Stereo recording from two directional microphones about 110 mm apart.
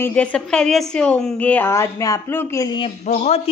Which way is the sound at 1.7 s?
30° left (ahead or behind).